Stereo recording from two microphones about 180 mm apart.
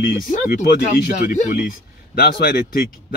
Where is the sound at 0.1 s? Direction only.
55° left (ahead or behind).